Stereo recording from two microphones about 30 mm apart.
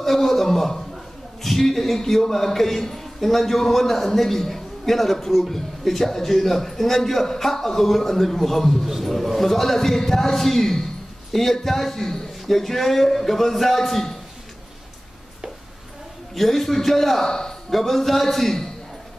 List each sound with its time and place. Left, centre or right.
0.0 s a sound: centre
2.2 s a man's voice: centre
16.3 s a man's voice: centre
17.3 s speech: centre
17.6 s a man's voice: centre